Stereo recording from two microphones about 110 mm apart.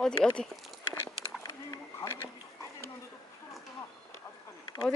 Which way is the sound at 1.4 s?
35° left (ahead or behind).